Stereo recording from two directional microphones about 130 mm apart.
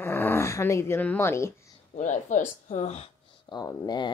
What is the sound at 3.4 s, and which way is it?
Speech, 30° left (ahead or behind).